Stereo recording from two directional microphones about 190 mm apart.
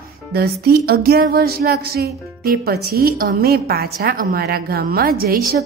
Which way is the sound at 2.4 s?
55° right (ahead or behind).